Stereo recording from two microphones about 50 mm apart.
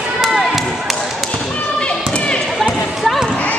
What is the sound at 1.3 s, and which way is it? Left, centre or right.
Basketball bounce, left.